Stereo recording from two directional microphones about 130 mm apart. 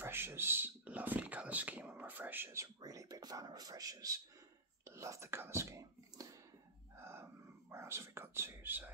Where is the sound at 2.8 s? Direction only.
25° right (ahead or behind).